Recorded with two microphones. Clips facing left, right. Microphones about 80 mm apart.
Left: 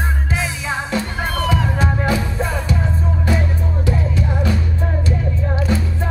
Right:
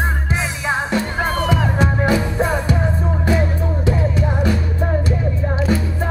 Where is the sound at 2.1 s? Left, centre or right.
Right.